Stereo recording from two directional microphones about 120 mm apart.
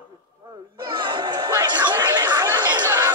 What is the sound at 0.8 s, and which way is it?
Chatter, 40° right (ahead or behind).